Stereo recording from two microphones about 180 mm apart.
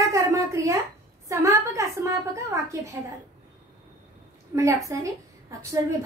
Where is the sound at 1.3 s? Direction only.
15° right (ahead or behind).